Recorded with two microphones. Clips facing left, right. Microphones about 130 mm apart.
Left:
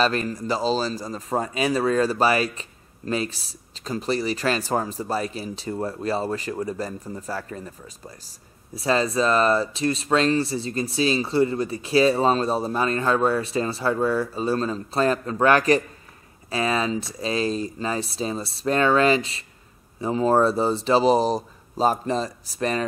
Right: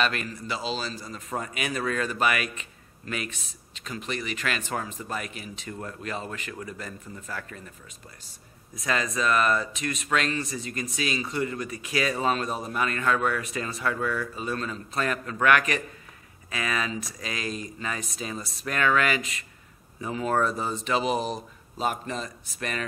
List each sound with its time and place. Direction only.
0.0 s speech: 35° left (ahead or behind)
8.7 s speech: 30° left (ahead or behind)